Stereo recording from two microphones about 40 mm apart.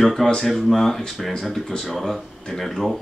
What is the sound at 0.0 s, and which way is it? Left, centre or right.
Speech, centre.